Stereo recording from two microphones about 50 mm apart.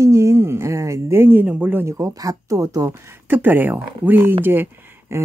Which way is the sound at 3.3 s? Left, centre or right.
Right.